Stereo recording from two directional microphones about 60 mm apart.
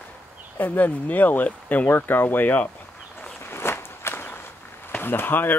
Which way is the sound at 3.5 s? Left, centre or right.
Left.